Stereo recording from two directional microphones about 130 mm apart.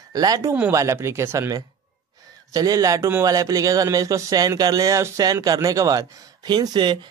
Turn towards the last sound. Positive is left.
turn(degrees=-35)  # may be behind; listen again after turning